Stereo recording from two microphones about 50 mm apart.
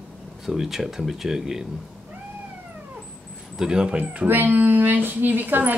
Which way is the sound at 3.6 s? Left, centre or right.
Centre.